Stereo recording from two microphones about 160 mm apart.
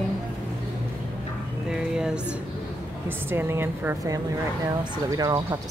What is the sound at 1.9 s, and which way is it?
Speech, 5° right (ahead or behind).